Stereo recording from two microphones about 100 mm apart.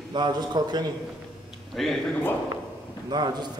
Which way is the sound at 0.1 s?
45° right (ahead or behind).